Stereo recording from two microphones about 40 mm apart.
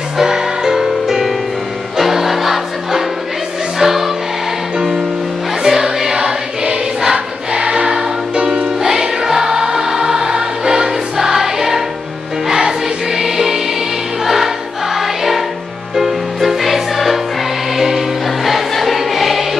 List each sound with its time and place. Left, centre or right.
0.2 s music: centre
5.6 s choir: centre
8.5 s music: centre
14.2 s choir: centre
15.0 s music: centre
17.7 s choir: centre